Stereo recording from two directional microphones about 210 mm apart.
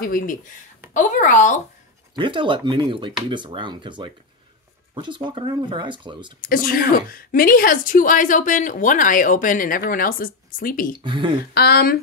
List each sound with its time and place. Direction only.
0.0 s a woman's voice: 40° left (ahead or behind)
2.1 s speech: 25° right (ahead or behind)
6.4 s a woman's voice: 45° left (ahead or behind)
11.0 s speech: 20° right (ahead or behind)
11.5 s speech: 50° left (ahead or behind)